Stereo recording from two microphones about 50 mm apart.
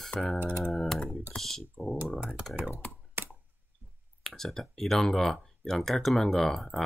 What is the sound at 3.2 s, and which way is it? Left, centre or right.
Clicking, right.